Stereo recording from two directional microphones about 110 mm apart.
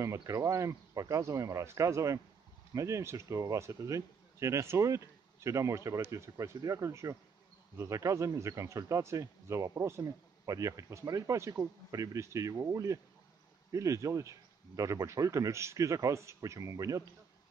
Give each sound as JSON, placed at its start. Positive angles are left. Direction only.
{"t": 0.0, "sound": "speech", "side_deg": -25}